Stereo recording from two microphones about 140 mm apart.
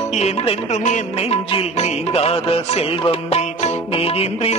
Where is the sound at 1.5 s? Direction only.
45° left (ahead or behind).